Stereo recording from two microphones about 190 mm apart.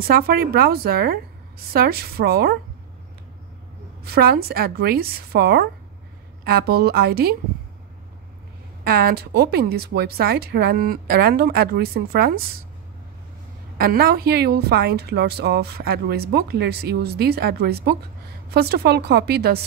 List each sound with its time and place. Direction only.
0.0 s a woman's voice: 50° right (ahead or behind)
4.0 s a woman's voice: 55° right (ahead or behind)
8.8 s a woman's voice: 50° right (ahead or behind)
13.7 s a woman's voice: 50° right (ahead or behind)